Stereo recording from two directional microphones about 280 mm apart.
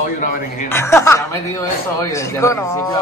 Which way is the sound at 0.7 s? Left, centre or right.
Centre.